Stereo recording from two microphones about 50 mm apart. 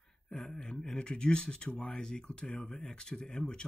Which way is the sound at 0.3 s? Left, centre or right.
Centre.